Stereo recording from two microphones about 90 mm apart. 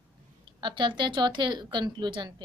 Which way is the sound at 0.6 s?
60° right (ahead or behind).